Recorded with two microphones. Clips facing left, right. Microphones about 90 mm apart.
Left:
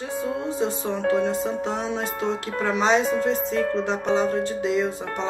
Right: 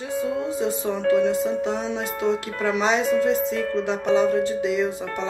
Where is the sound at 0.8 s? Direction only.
20° left (ahead or behind).